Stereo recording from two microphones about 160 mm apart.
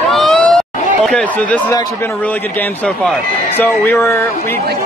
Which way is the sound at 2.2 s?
10° left (ahead or behind).